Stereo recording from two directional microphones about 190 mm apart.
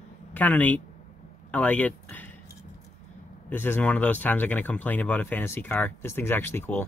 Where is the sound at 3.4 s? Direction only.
10° left (ahead or behind).